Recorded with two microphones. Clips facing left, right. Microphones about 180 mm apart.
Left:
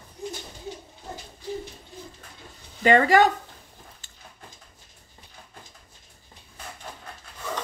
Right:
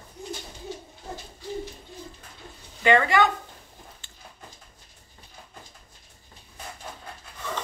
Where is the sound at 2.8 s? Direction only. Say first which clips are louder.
Left 3 dB; 40° left (ahead or behind).